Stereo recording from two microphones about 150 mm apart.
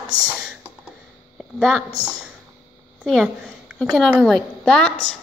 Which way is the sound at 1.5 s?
Centre (ahead or behind).